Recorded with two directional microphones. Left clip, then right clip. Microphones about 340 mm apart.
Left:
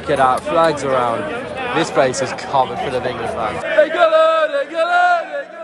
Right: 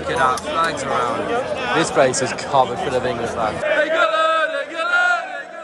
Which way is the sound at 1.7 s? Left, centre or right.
Centre.